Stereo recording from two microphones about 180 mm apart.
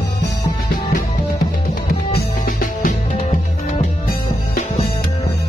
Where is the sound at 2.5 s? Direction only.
50° left (ahead or behind).